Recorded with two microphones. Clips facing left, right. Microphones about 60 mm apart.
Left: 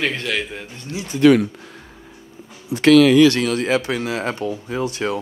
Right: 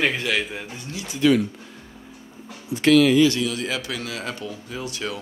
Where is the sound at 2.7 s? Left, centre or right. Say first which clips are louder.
Left 4 dB; left.